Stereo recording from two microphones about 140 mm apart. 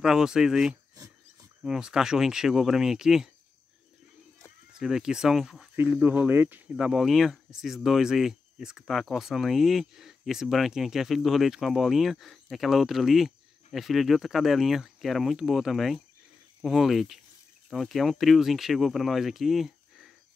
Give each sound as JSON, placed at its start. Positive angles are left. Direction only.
{"t": 0.0, "sound": "speech", "side_deg": -5}
{"t": 0.9, "sound": "wild animals", "side_deg": -25}
{"t": 1.6, "sound": "speech", "side_deg": -5}
{"t": 4.4, "sound": "speech", "side_deg": 0}
{"t": 6.0, "sound": "speech", "side_deg": -15}
{"t": 6.9, "sound": "speech", "side_deg": 0}